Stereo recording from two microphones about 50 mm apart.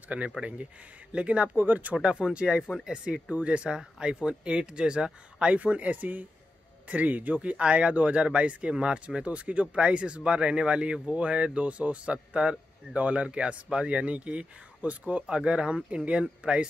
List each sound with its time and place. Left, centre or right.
0.4 s speech: right
2.0 s speech: right